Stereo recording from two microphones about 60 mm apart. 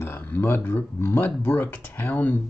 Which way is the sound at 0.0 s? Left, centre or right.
Left.